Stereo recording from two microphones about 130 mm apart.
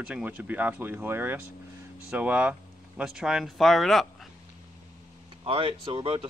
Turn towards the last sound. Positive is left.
turn(degrees=-40)  # may be behind; listen again after turning